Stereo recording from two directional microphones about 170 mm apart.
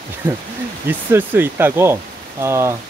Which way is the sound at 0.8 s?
10° right (ahead or behind).